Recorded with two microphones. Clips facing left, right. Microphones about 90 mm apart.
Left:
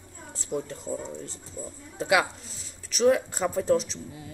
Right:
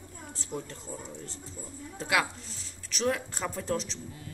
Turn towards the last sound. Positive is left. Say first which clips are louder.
# left 3 dB
turn(degrees=10)  # may be behind; listen again after turning